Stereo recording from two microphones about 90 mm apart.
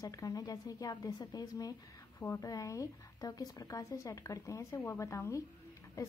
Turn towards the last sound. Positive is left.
turn(degrees=40)  # may be behind; listen again after turning